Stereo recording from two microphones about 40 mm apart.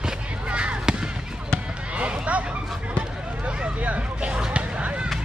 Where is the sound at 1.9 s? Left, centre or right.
Right.